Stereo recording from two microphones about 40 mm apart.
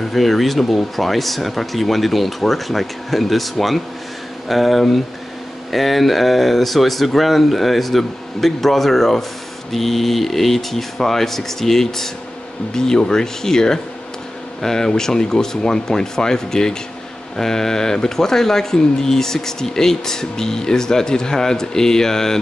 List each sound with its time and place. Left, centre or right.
0.0 s speech: centre